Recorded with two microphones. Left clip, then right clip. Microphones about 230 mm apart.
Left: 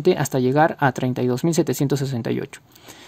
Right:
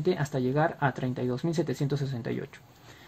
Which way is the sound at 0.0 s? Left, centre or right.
Left.